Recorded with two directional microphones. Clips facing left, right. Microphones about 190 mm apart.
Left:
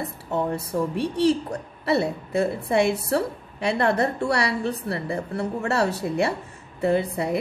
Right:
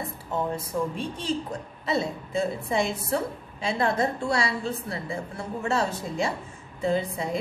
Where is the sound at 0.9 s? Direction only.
70° left (ahead or behind).